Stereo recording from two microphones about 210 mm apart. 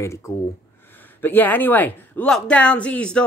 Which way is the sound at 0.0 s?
15° left (ahead or behind).